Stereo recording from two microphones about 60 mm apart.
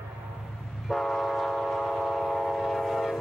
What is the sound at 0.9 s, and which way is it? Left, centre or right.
Train, centre.